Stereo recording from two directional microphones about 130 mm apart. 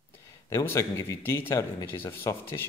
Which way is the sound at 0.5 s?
20° left (ahead or behind).